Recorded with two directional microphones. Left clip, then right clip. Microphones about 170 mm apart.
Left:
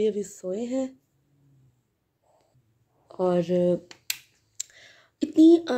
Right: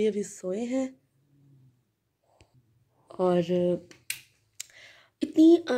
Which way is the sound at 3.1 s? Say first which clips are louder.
Left 1 dB; centre (ahead or behind).